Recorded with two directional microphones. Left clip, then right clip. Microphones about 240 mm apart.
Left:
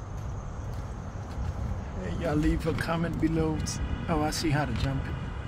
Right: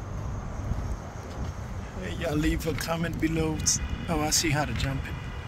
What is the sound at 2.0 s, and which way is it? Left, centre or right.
Speech, right.